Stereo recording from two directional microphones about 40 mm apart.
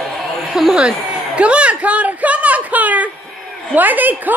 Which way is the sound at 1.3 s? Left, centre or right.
Right.